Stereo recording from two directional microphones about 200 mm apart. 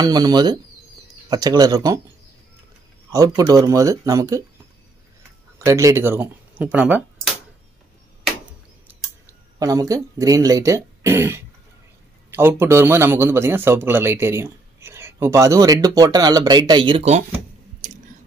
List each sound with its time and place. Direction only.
0.0 s speech: 20° right (ahead or behind)
3.1 s a man's voice: 20° right (ahead or behind)
5.7 s a man's voice: 15° right (ahead or behind)
8.8 s a man's voice: 15° right (ahead or behind)